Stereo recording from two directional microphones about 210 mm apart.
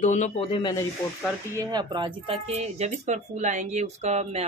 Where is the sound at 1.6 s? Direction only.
20° right (ahead or behind).